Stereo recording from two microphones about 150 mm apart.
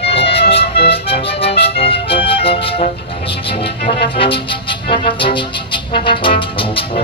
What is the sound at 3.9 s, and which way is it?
Music, 35° left (ahead or behind).